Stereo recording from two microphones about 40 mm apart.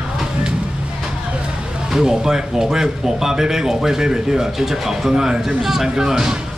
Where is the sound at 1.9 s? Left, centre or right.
Centre.